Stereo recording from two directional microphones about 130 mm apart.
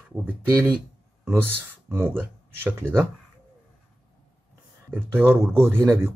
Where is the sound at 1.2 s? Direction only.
20° right (ahead or behind).